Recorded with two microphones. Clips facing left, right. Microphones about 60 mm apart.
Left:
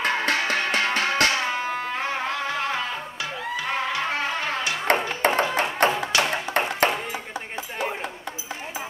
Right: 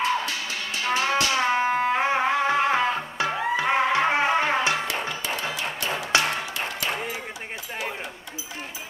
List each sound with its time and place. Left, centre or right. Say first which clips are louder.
0.0 s music: left 2 dB; left
1.5 s music: right 5 dB; right
5.0 s music: left 7 dB; left
6.1 s a sound: right 3 dB; right